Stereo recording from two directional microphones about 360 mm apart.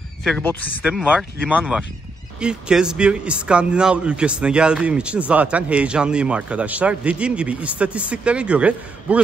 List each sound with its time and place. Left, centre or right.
0.2 s speech: centre